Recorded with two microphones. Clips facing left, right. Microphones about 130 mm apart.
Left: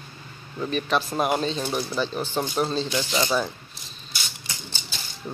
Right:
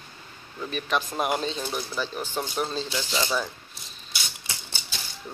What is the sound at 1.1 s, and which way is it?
Speech, 25° left (ahead or behind).